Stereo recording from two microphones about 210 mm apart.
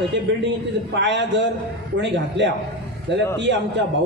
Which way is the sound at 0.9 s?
55° right (ahead or behind).